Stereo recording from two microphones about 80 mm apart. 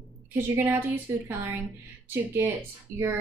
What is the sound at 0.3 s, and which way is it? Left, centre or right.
A woman's voice, right.